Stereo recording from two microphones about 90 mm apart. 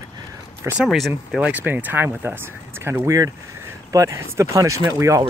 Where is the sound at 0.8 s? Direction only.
Centre (ahead or behind).